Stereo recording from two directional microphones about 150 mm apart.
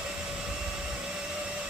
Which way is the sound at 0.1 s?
5° right (ahead or behind).